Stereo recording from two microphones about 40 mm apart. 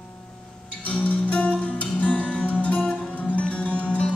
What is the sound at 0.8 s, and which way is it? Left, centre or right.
Music, left.